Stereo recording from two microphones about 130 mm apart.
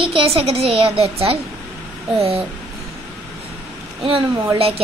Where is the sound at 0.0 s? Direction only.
45° right (ahead or behind).